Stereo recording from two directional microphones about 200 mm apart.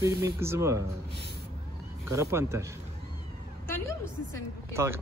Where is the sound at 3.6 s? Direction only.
10° left (ahead or behind).